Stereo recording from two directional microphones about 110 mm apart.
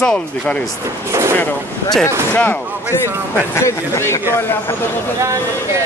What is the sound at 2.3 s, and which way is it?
Speech, 15° left (ahead or behind).